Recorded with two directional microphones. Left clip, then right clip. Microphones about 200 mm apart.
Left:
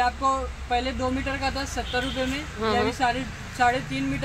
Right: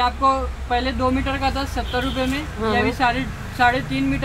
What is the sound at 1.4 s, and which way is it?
Speech, 20° left (ahead or behind).